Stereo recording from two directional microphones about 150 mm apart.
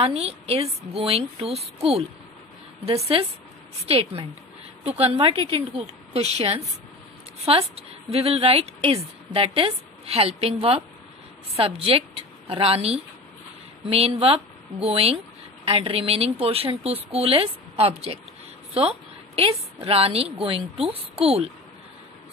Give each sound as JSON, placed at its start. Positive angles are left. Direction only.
{"t": 0.0, "sound": "a woman's voice", "side_deg": -40}
{"t": 3.8, "sound": "a woman's voice", "side_deg": -40}